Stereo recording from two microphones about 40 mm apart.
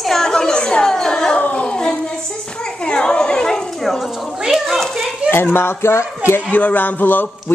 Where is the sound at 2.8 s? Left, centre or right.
Left.